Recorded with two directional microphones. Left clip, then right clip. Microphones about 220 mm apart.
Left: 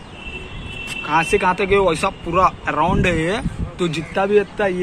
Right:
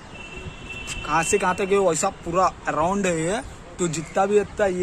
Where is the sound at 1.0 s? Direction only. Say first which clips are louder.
Left 4 dB; 45° right (ahead or behind).